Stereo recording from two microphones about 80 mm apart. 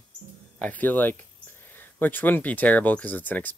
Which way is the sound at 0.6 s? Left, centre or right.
Centre.